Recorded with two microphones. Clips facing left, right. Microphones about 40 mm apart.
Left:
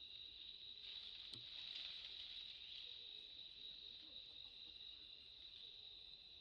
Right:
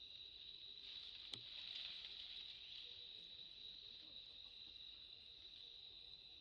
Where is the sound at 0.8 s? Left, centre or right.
Centre.